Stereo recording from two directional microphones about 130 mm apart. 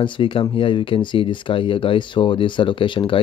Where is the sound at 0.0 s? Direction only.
40° left (ahead or behind).